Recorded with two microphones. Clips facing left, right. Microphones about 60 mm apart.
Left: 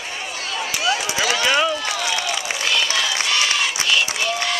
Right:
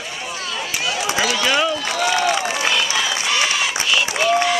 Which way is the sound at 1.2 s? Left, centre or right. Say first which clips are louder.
Left 1 dB; left.